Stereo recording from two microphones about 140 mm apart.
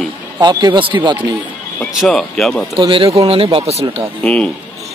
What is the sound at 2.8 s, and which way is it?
A man's voice, 40° right (ahead or behind).